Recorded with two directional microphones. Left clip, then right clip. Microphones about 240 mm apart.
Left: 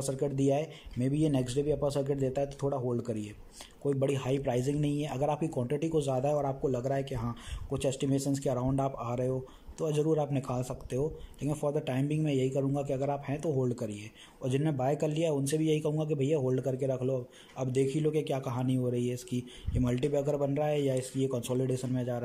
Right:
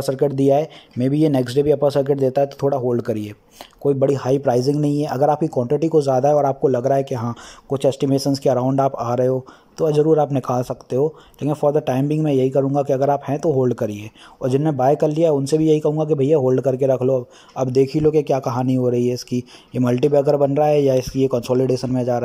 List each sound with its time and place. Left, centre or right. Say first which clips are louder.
0.0 s speech: right 13 dB; centre